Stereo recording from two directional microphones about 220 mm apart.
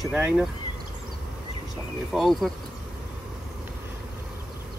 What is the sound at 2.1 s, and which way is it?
Speech, centre (ahead or behind).